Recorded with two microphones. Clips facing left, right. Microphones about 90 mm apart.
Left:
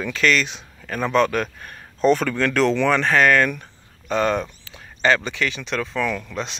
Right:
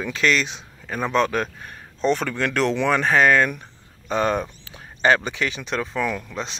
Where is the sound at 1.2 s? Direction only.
30° right (ahead or behind).